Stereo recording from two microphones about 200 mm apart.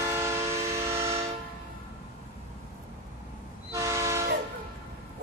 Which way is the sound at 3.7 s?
15° right (ahead or behind).